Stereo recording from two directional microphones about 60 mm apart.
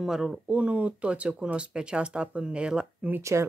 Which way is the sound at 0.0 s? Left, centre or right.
Centre.